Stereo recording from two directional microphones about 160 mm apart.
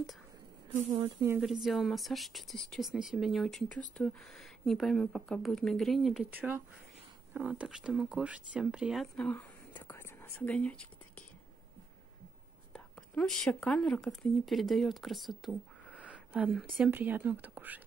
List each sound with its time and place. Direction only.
0.7 s speech: 40° right (ahead or behind)
1.1 s speech: 15° right (ahead or behind)
1.4 s speech: centre (ahead or behind)
12.7 s speech: 5° left (ahead or behind); by 17.8 s 10° right (ahead or behind)